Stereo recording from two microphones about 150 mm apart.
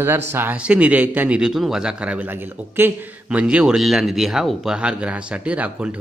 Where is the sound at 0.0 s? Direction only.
15° right (ahead or behind).